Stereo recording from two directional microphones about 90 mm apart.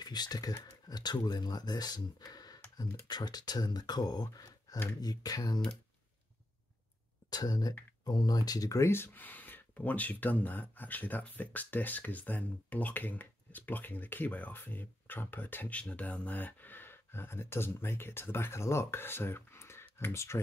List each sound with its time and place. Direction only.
0.0 s speech: 50° left (ahead or behind)
7.2 s speech: 45° left (ahead or behind); by 20.3 s 30° left (ahead or behind)